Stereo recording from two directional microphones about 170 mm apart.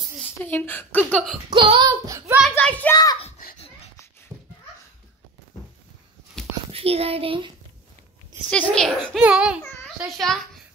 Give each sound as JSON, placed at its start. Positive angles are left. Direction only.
{"t": 0.2, "sound": "a child's voice", "side_deg": 10}
{"t": 1.5, "sound": "speech", "side_deg": -30}
{"t": 2.5, "sound": "a sound", "side_deg": 10}
{"t": 2.9, "sound": "a sound", "side_deg": 20}
{"t": 6.7, "sound": "a child's voice", "side_deg": -35}
{"t": 8.5, "sound": "a child's voice", "side_deg": 5}